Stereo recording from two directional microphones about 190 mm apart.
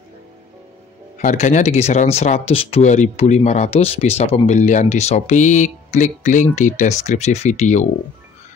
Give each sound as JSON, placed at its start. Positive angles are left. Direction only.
{"t": 1.1, "sound": "speech", "side_deg": 35}